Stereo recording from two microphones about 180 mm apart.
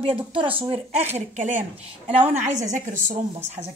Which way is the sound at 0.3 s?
30° right (ahead or behind).